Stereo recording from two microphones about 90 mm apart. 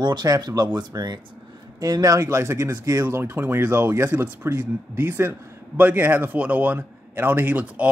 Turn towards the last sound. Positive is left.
turn(degrees=-15)  # may be behind; listen again after turning